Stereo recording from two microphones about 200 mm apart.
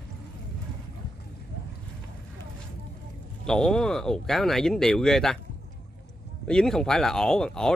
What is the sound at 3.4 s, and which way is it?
Speech, 5° left (ahead or behind).